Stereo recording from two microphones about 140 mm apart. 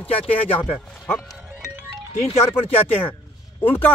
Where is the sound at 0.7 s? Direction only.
15° left (ahead or behind).